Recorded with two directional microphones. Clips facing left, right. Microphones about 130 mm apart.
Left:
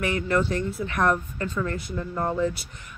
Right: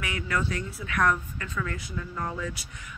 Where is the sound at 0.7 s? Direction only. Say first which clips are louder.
Left 1 dB; 45° left (ahead or behind).